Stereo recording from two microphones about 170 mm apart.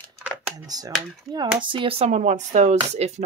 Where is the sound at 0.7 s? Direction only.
20° right (ahead or behind).